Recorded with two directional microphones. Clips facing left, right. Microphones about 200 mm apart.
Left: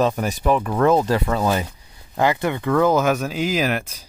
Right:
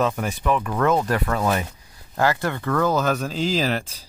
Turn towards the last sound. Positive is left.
turn(degrees=10)  # may be behind; listen again after turning